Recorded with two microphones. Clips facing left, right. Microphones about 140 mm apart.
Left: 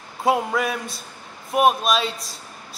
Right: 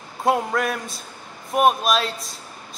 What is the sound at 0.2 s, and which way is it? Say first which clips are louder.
A man's voice: even; centre (ahead or behind).